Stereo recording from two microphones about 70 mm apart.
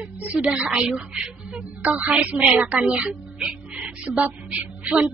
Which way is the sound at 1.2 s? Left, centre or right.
Centre.